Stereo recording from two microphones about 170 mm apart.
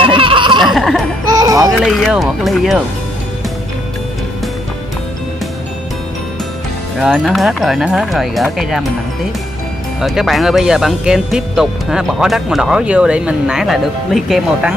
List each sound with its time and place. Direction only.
0.0 s a sound: 30° right (ahead or behind)
0.7 s laughter: centre (ahead or behind)
1.3 s music: 20° right (ahead or behind)
1.7 s speech: centre (ahead or behind)
7.0 s speech: centre (ahead or behind)
9.9 s speech: centre (ahead or behind)